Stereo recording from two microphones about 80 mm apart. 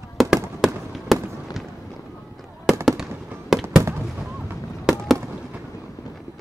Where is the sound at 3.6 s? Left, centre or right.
Right.